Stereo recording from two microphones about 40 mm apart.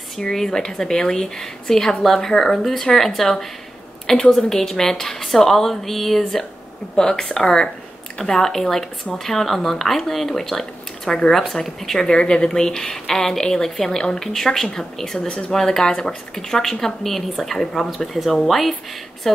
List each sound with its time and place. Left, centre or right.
0.2 s speech: centre
7.0 s speech: centre
12.2 s speech: left
15.2 s speech: left
15.5 s a woman's voice: centre